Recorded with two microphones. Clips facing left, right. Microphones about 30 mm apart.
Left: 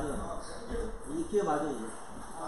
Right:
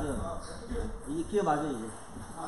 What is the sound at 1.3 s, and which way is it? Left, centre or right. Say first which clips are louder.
Speech: even; right.